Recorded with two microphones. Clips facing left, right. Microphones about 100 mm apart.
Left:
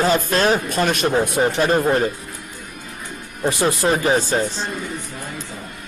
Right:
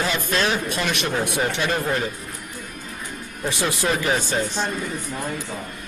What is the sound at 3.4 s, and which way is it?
Speech, 35° left (ahead or behind).